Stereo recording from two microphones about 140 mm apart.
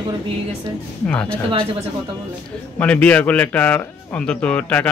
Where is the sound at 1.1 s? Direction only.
10° left (ahead or behind).